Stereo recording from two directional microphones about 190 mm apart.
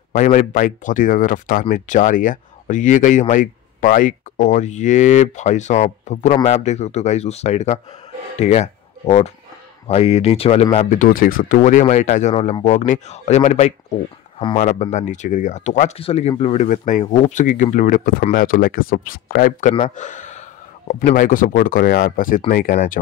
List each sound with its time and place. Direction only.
0.1 s speech: 40° left (ahead or behind)
19.7 s speech: 35° left (ahead or behind)